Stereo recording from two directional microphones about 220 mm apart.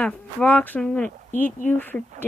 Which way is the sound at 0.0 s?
5° left (ahead or behind).